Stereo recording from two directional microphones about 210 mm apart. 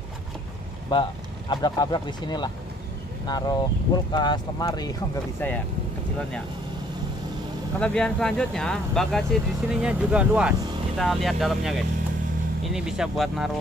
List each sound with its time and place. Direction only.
0.9 s speech: 20° left (ahead or behind)
7.8 s speech: 5° left (ahead or behind)